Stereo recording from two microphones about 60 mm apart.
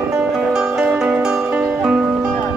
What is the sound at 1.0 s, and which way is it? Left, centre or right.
Music, centre.